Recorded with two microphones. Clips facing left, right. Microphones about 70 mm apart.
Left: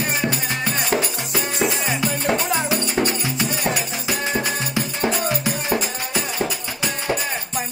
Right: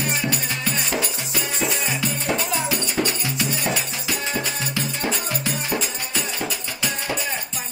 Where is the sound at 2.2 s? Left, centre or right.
Left.